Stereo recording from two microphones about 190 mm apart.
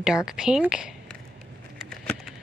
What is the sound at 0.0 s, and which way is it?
Speech, 5° right (ahead or behind).